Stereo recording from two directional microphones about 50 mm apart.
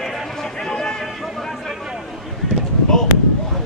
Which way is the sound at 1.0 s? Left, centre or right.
Centre.